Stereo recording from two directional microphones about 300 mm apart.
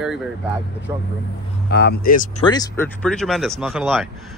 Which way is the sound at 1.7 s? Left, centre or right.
Left.